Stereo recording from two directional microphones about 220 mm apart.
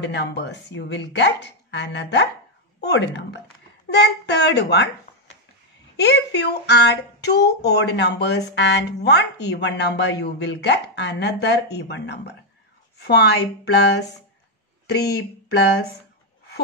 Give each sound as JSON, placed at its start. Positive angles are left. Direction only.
{"t": 0.0, "sound": "speech", "side_deg": 50}
{"t": 5.9, "sound": "speech", "side_deg": 50}